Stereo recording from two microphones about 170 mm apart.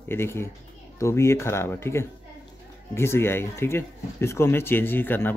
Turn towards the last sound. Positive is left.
turn(degrees=10)  # may be behind; listen again after turning